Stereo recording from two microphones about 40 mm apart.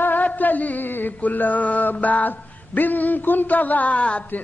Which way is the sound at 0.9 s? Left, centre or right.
Left.